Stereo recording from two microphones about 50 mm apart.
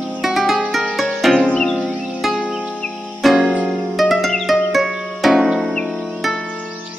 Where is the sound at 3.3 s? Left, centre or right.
Right.